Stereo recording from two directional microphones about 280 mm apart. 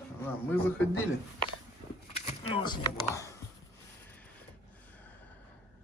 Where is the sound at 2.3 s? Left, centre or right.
Centre.